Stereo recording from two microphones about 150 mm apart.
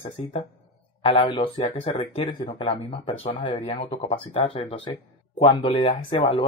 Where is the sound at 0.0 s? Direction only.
45° left (ahead or behind).